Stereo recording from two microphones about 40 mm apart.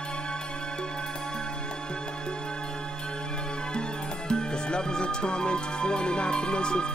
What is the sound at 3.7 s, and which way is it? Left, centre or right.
Music, left.